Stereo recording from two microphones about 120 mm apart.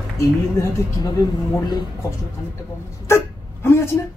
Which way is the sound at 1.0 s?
30° left (ahead or behind).